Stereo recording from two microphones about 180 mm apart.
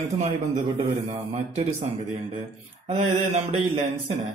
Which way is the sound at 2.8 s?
35° right (ahead or behind).